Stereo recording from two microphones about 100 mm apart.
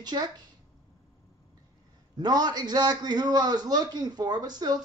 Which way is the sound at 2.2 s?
45° right (ahead or behind).